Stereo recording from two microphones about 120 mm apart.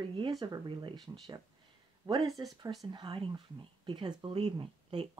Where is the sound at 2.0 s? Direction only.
20° right (ahead or behind).